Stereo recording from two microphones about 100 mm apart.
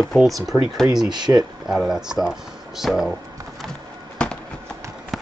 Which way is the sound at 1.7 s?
5° right (ahead or behind).